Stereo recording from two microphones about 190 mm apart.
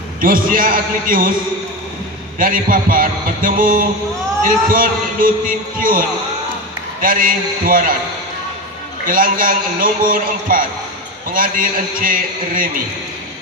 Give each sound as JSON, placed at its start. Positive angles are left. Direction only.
{"t": 0.2, "sound": "a man's voice", "side_deg": -45}
{"t": 2.3, "sound": "a man's voice", "side_deg": -45}
{"t": 9.0, "sound": "a man's voice", "side_deg": -45}